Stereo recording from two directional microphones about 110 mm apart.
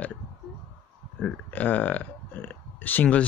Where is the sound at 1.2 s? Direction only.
15° left (ahead or behind).